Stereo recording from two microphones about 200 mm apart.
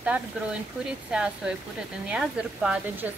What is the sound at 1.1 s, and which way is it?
A woman's voice, 5° right (ahead or behind).